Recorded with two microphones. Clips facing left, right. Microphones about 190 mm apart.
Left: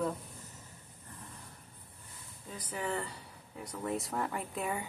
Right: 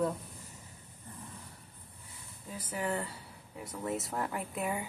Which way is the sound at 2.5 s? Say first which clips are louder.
Right 2 dB; 5° right (ahead or behind).